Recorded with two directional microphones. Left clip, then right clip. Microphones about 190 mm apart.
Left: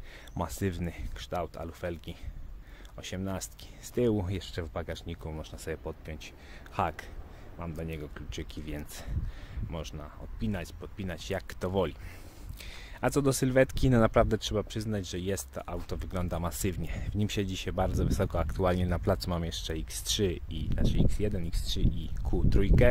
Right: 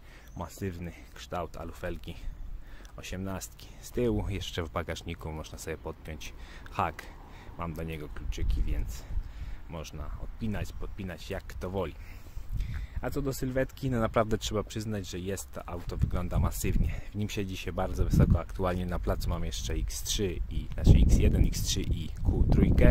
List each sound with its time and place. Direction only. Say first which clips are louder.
0.4 s speech: left 4 dB; 15° left (ahead or behind)
8.3 s speech: left 2 dB; 15° left (ahead or behind)
12.5 s speech: left 4 dB; 30° left (ahead or behind); by 20.8 s 10° left (ahead or behind)
20.8 s speech: right 3 dB; centre (ahead or behind)
22.5 s speech: even; 10° left (ahead or behind)